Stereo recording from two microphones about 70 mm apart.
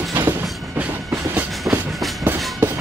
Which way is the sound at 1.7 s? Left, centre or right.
Centre.